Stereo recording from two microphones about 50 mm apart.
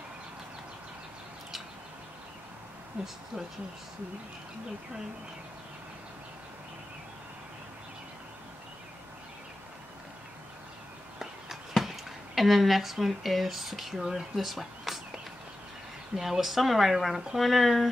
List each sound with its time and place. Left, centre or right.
3.0 s speech: centre
11.1 s speech: centre
16.2 s speech: centre